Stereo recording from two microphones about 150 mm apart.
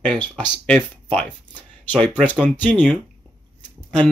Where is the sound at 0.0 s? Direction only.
5° left (ahead or behind).